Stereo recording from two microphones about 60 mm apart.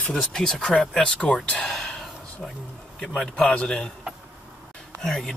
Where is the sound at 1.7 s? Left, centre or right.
Centre.